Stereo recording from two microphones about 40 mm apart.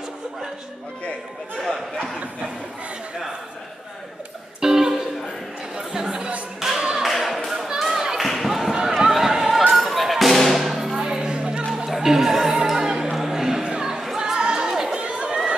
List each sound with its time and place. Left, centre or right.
1.6 s chatter: centre
4.6 s music: centre
5.8 s chatter: centre
6.8 s clapping: centre
7.1 s a sound: centre
8.2 s basketball bounce: centre
9.1 s a sound: centre
9.8 s music: centre; by 11.6 s right
11.7 s music: centre
13.1 s a sound: centre
13.7 s music: centre
14.1 s a sound: centre
14.9 s chatter: right